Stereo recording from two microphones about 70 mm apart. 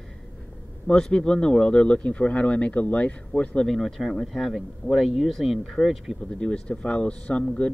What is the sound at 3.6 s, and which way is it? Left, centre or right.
Speech, centre.